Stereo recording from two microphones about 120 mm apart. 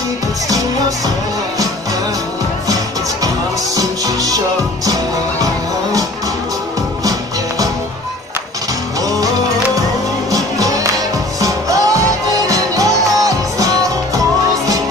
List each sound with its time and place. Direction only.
0.5 s music: 30° right (ahead or behind)
3.7 s music: 30° right (ahead or behind)
7.1 s music: 30° right (ahead or behind)
9.0 s music: 30° right (ahead or behind)
10.3 s music: 30° right (ahead or behind)